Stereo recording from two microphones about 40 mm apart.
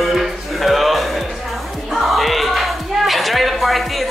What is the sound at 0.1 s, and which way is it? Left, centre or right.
Music, centre.